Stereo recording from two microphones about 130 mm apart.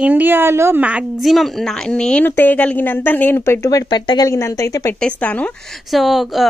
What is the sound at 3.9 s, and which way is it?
Speech, 40° left (ahead or behind).